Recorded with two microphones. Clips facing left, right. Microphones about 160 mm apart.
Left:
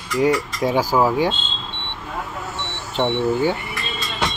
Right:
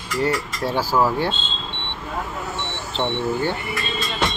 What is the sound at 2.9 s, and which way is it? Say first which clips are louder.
Speech: left 4 dB; 10° left (ahead or behind).